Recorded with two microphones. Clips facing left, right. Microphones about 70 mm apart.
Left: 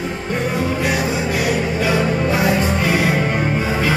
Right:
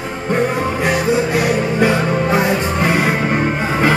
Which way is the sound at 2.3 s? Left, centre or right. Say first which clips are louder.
Right 1 dB; right.